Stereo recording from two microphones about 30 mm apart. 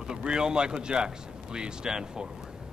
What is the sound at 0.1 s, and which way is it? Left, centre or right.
Speech, right.